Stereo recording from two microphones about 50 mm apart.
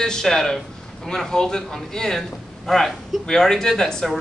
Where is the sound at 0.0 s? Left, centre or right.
Centre.